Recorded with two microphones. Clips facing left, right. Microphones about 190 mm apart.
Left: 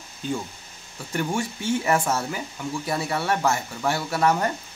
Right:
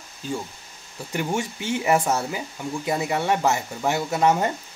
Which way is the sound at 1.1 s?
20° right (ahead or behind).